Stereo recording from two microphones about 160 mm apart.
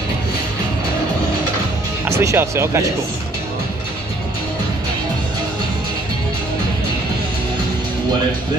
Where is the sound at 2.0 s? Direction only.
15° right (ahead or behind).